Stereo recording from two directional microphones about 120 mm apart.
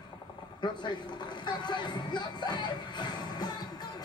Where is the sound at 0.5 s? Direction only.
40° left (ahead or behind).